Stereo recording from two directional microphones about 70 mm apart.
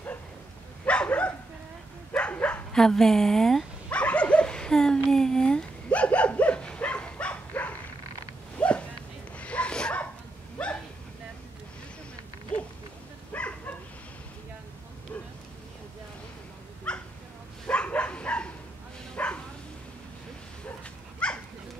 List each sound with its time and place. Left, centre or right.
0.8 s dog: centre
2.1 s bow-wow: centre
2.7 s speech: centre
3.9 s dog: centre
8.5 s a sound: centre
9.4 s zipper: centre
12.5 s a sound: centre
13.3 s bow-wow: left
16.9 s dog: centre
19.1 s bow-wow: centre
21.2 s bird: centre